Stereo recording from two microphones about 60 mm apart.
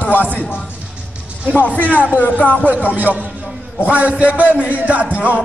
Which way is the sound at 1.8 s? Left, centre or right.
Left.